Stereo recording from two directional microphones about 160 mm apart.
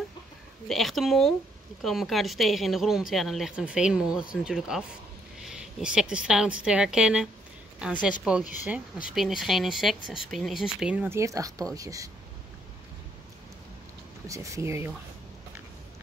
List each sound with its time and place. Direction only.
0.7 s a woman's voice: centre (ahead or behind)
11.1 s speech: 20° right (ahead or behind)
14.2 s speech: 20° right (ahead or behind)